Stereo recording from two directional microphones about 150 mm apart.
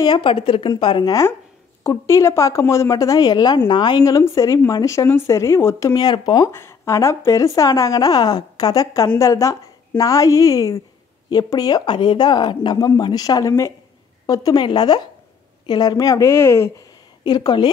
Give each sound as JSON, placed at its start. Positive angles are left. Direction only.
{"t": 0.0, "sound": "a woman's voice", "side_deg": 30}
{"t": 6.5, "sound": "a woman's voice", "side_deg": 15}
{"t": 17.2, "sound": "a woman's voice", "side_deg": 30}